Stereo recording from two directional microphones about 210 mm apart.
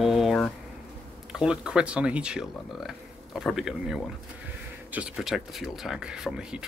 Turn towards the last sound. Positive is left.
turn(degrees=-5)  # may be behind; listen again after turning